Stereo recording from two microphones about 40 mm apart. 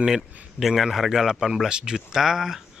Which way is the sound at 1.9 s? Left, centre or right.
Centre.